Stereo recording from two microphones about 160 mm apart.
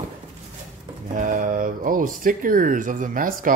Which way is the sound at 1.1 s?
55° right (ahead or behind).